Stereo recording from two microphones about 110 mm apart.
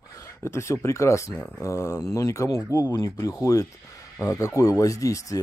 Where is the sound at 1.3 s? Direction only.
15° left (ahead or behind).